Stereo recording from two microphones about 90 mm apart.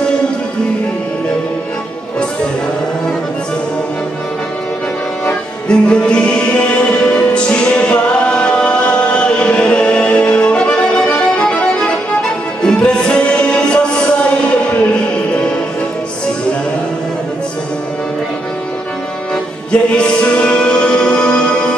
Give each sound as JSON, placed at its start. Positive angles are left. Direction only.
{"t": 5.2, "sound": "music", "side_deg": 10}
{"t": 19.7, "sound": "music", "side_deg": 10}